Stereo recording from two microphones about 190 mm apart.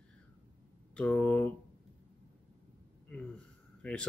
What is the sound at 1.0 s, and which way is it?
Speech, 5° left (ahead or behind).